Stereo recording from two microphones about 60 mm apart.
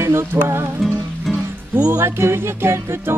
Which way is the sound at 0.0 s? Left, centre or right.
Right.